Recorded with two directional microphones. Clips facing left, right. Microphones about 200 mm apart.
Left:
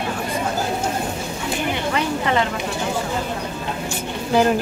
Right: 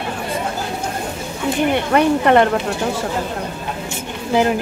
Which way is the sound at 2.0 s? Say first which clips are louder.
Right 9 dB; 60° right (ahead or behind).